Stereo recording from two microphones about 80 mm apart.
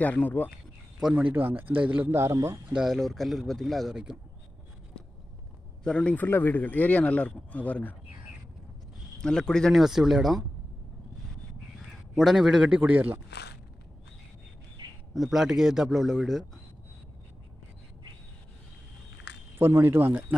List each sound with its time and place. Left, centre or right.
0.0 s speech: left
1.1 s speech: right
2.0 s speech: right
2.7 s speech: centre
3.9 s a man's voice: centre
5.9 s speech: centre
9.2 s speech: centre
9.8 s speech: centre
12.2 s a man's voice: centre; by 13.2 s right
15.1 s speech: centre
19.6 s speech: right